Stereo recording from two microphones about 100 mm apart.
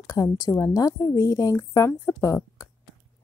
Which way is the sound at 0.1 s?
35° left (ahead or behind).